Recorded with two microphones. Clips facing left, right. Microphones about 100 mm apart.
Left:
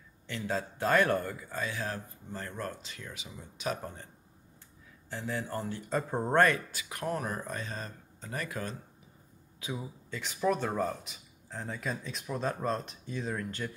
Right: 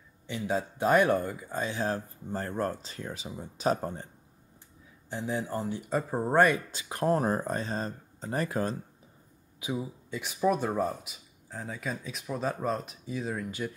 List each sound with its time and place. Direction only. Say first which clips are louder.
0.5 s speech: right 4 dB; 15° right (ahead or behind); by 4.1 s 35° right (ahead or behind)
5.1 s speech: right 3 dB; 15° right (ahead or behind)
6.7 s speech: right 7 dB; 30° right (ahead or behind)
9.6 s speech: right 5 dB; 15° right (ahead or behind)